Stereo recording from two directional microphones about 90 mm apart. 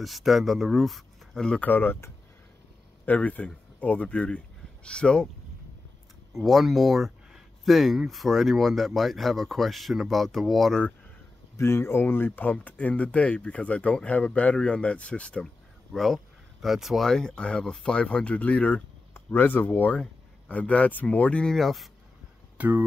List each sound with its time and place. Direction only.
0.0 s speech: centre (ahead or behind)
1.7 s speech: 20° left (ahead or behind)
6.3 s speech: centre (ahead or behind)
11.5 s speech: 30° left (ahead or behind); by 21.8 s 5° left (ahead or behind)
22.6 s speech: 20° right (ahead or behind)